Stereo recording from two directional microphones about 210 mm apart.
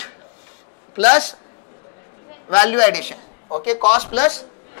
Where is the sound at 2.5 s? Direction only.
10° left (ahead or behind).